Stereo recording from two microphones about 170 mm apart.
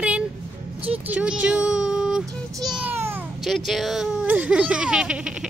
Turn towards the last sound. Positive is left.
turn(degrees=-5)  # may be behind; listen again after turning